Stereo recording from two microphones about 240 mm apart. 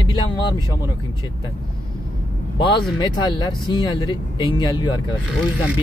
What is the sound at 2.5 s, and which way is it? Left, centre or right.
Speech, centre.